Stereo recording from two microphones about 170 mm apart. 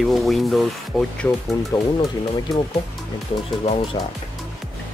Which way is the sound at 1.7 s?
20° left (ahead or behind).